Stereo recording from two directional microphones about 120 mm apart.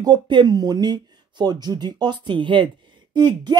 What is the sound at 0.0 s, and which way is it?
Speech, 40° right (ahead or behind).